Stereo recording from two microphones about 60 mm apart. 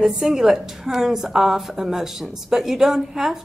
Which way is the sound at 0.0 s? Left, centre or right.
Centre.